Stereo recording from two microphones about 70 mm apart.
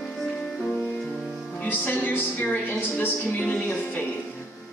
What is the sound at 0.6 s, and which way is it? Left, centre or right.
Music, centre.